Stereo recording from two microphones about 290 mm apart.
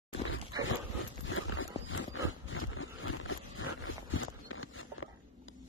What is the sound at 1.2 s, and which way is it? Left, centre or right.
Dog, left.